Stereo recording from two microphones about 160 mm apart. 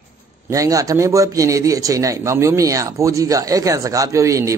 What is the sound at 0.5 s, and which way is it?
A man's voice, 20° right (ahead or behind).